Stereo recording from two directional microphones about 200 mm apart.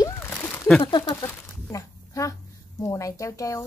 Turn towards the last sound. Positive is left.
turn(degrees=15)  # may be behind; listen again after turning